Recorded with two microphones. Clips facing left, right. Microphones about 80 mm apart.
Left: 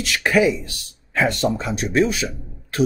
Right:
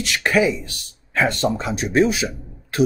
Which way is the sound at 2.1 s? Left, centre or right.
Centre.